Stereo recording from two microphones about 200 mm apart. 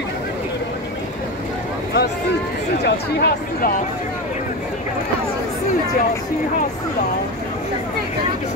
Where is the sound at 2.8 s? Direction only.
50° left (ahead or behind).